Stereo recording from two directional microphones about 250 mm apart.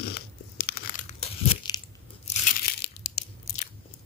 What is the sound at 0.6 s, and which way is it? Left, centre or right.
Crumpling, left.